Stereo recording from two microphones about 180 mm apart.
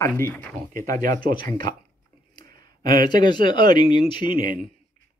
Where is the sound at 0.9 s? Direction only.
50° right (ahead or behind).